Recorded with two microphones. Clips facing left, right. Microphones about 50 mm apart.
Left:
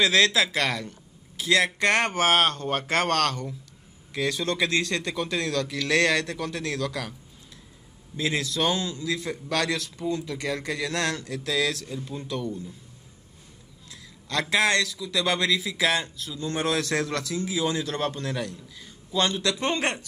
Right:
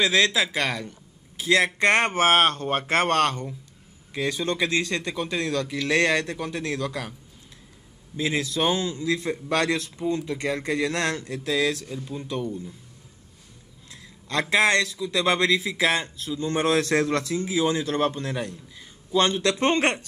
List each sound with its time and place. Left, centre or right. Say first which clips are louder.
0.0 s speech: even; centre
1.4 s speech: right 2 dB; right
4.1 s speech: right 1 dB; centre
8.2 s speech: right 1 dB; centre
12.3 s speech: right 2 dB; centre
14.4 s speech: right 2 dB; right